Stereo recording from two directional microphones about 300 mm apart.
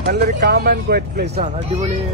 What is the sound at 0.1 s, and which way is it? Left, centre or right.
Speech, right.